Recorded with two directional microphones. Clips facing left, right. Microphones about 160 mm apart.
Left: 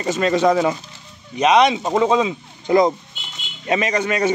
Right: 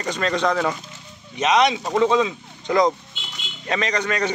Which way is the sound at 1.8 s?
25° left (ahead or behind).